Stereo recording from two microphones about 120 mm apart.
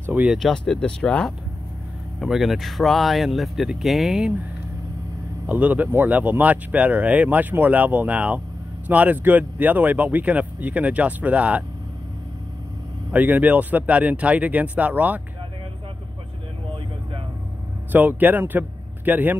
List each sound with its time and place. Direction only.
0.0 s speech: 15° right (ahead or behind)
0.3 s speech: centre (ahead or behind)
5.5 s speech: 15° right (ahead or behind)
13.1 s speech: 15° right (ahead or behind)
17.9 s speech: 15° right (ahead or behind)